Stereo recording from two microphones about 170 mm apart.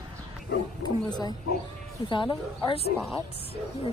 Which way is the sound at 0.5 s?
80° left.